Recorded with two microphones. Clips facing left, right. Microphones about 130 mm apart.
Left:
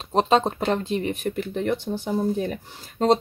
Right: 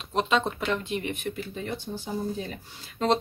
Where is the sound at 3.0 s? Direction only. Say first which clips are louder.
Left 5 dB; 40° left (ahead or behind).